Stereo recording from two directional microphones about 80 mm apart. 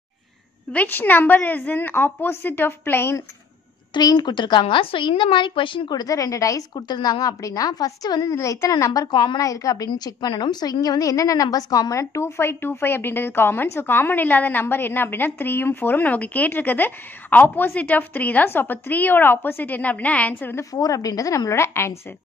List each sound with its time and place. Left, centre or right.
0.7 s a woman's voice: left
3.9 s speech: left
6.7 s a woman's voice: left
9.1 s speech: left
9.4 s a woman's voice: left
9.8 s a woman's voice: left
20.7 s a woman's voice: left